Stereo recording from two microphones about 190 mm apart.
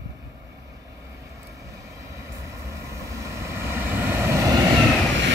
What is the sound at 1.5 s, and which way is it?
Vehicle, 15° right (ahead or behind).